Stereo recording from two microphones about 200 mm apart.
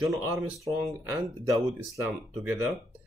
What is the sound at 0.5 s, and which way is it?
Speech, 15° right (ahead or behind).